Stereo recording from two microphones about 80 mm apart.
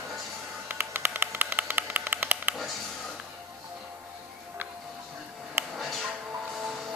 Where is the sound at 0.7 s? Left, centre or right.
Right.